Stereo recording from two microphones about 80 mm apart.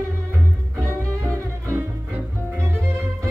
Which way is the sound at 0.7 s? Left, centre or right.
Right.